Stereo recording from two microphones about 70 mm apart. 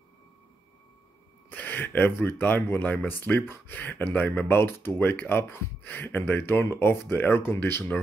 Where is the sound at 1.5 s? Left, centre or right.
Left.